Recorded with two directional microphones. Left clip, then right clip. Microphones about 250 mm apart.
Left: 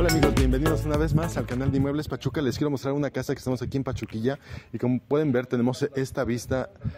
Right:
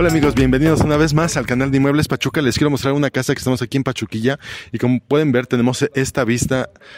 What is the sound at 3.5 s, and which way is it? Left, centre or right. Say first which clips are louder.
Speech: right 9 dB; right.